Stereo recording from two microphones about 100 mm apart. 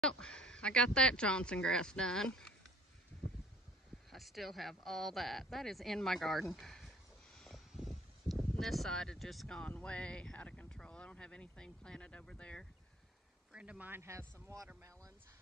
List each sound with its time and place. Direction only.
0.0 s speech: 10° left (ahead or behind)
4.1 s speech: centre (ahead or behind)
7.3 s a sound: 5° left (ahead or behind)
7.7 s speech: centre (ahead or behind)
13.5 s a man's voice: 10° right (ahead or behind); by 15.1 s 30° right (ahead or behind)